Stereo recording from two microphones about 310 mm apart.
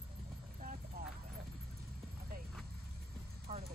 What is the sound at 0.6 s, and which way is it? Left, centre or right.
Vehicle, right.